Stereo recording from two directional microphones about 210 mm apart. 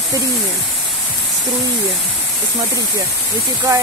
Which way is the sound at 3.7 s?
15° right (ahead or behind).